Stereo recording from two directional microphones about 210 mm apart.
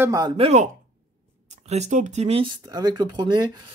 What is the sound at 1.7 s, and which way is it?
Speech, 35° right (ahead or behind).